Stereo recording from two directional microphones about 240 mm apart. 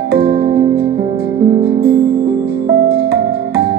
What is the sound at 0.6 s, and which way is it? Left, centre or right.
Music, right.